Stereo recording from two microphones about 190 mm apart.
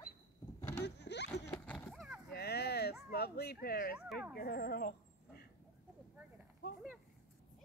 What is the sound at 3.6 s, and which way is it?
Speech, 55° left (ahead or behind).